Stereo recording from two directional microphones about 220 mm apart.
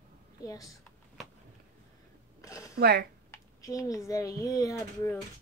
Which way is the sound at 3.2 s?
15° left (ahead or behind).